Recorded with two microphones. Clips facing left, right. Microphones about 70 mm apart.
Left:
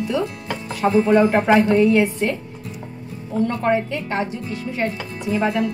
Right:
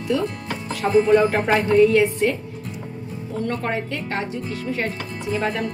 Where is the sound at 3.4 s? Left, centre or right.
Centre.